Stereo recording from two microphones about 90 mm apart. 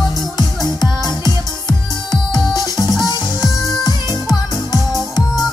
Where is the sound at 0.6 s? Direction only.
50° left (ahead or behind).